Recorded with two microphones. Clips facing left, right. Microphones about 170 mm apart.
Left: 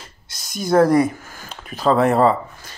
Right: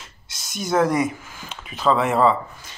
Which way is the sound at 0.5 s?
35° left (ahead or behind).